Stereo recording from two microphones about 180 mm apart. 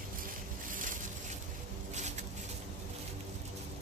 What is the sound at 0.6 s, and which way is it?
Boat, 45° right (ahead or behind).